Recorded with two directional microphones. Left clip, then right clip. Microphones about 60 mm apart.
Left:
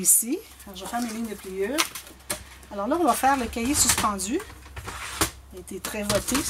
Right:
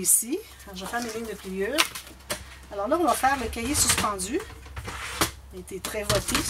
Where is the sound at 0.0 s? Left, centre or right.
Left.